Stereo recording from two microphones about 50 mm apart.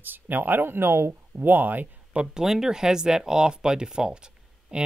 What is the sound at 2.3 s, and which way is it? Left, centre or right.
Speech, centre.